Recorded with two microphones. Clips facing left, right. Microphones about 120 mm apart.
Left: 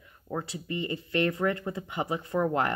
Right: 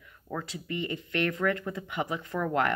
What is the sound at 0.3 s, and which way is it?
Speech, 25° left (ahead or behind).